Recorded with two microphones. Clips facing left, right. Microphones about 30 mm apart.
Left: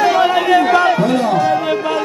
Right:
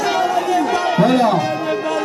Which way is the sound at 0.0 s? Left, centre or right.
Left.